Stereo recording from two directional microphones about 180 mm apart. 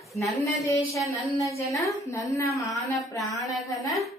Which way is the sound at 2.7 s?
Centre (ahead or behind).